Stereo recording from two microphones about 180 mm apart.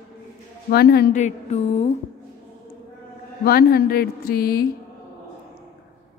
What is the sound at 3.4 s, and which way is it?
A woman's voice, 55° left (ahead or behind).